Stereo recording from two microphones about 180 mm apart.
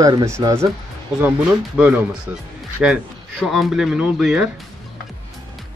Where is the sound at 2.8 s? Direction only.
5° right (ahead or behind).